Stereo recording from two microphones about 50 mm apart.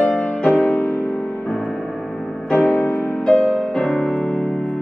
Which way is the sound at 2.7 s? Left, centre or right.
Centre.